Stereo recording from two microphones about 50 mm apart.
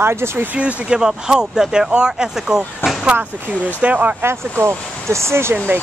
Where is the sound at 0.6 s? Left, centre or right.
Right.